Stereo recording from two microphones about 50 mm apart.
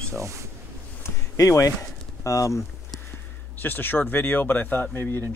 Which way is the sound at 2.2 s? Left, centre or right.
Left.